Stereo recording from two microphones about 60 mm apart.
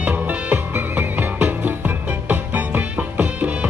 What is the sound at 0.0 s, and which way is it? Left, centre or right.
Music, right.